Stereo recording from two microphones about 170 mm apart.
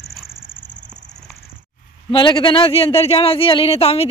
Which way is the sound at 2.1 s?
30° left (ahead or behind).